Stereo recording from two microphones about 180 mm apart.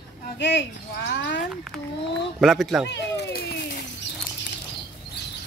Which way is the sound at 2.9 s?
65° left (ahead or behind).